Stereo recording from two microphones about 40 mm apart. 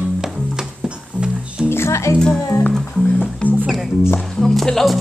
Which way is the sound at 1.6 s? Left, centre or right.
Left.